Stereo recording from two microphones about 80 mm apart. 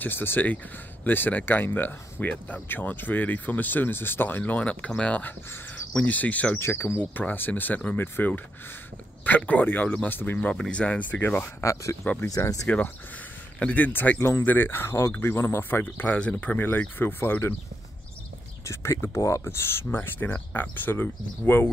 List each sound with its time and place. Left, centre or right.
0.0 s speech: left
6.6 s speech: left
10.5 s speech: centre
11.6 s speech: left
12.0 s speech: left
12.3 s speech: left
13.6 s speech: centre
14.1 s speech: left
18.7 s speech: left